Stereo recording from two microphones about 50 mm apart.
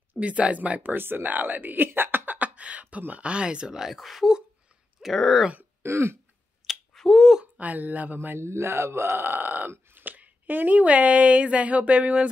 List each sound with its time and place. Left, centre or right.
0.2 s speech: right
0.9 s speech: right
2.0 s cough: right
2.3 s a sound: right
3.0 s speech: right; by 5.5 s centre
5.8 s throat clearing: right
6.7 s finger snapping: centre
7.5 s speech: right
8.4 s speech: right
9.2 s speech: right